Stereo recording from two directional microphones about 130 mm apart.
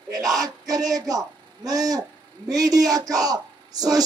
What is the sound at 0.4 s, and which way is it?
A man's voice, 30° right (ahead or behind).